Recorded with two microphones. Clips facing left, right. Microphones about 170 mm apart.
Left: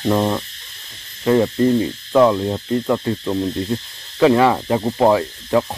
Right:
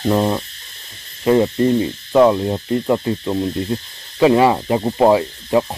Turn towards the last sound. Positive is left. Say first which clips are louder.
# right 1 dB
turn(degrees=-15)  # may be behind; listen again after turning